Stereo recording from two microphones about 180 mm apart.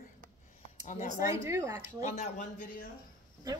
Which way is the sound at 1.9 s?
45° left (ahead or behind).